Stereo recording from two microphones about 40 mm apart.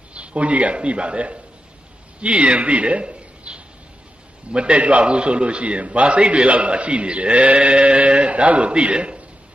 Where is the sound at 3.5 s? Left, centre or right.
Right.